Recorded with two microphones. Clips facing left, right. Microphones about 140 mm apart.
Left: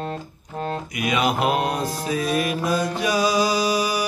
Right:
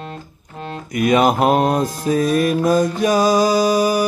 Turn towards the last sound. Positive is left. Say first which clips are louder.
# right 6 dB
turn(degrees=-45)  # may be behind; listen again after turning